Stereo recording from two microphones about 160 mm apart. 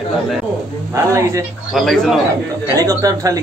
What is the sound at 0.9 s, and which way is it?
Speech, 20° right (ahead or behind).